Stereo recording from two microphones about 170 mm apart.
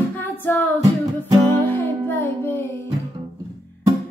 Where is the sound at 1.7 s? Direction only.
10° left (ahead or behind).